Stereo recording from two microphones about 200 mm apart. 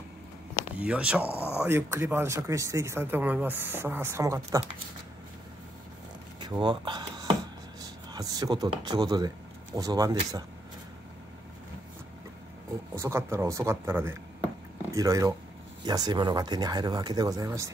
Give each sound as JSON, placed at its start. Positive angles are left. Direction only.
{"t": 0.6, "sound": "speech", "side_deg": -5}
{"t": 1.2, "sound": "speech", "side_deg": 10}
{"t": 1.6, "sound": "speech", "side_deg": -10}
{"t": 6.4, "sound": "a sound", "side_deg": -20}
{"t": 7.8, "sound": "speech", "side_deg": -20}
{"t": 12.9, "sound": "speech", "side_deg": -15}